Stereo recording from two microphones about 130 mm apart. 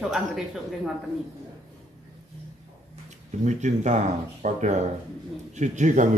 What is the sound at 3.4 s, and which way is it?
A man's voice, 65° right (ahead or behind).